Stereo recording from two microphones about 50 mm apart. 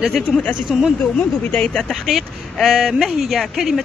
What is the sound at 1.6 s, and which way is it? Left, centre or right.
Speech, centre.